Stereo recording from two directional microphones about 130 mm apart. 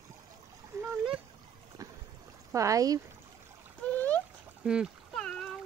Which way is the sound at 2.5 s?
25° right (ahead or behind).